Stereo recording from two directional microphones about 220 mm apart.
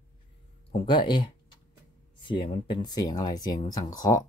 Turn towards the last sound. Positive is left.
turn(degrees=15)  # may be behind; listen again after turning